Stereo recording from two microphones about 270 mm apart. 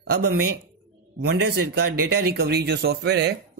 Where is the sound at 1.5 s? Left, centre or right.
Right.